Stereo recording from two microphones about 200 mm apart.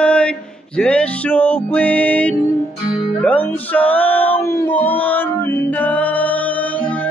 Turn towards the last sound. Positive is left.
turn(degrees=5)  # may be behind; listen again after turning